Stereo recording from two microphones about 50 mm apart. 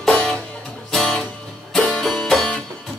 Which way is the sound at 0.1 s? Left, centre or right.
Left.